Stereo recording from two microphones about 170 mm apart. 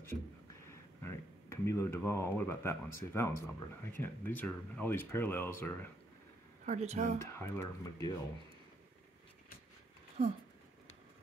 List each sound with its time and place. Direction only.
1.0 s speech: 15° left (ahead or behind)
6.6 s speech: 40° right (ahead or behind)
7.3 s speech: 20° left (ahead or behind)